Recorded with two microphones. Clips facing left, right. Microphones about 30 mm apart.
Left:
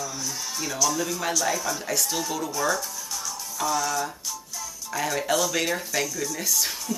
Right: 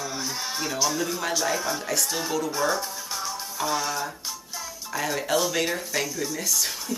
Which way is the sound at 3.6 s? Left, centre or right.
Right.